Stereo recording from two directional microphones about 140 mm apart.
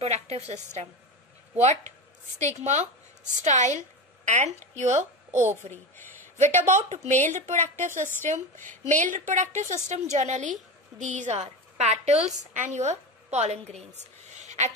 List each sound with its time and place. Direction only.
0.0 s a woman's voice: 50° right (ahead or behind)
2.3 s a woman's voice: 55° right (ahead or behind)
5.3 s a child's voice: 15° right (ahead or behind)
6.3 s a woman's voice: 55° right (ahead or behind)